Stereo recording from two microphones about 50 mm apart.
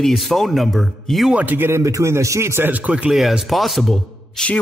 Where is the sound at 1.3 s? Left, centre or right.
Right.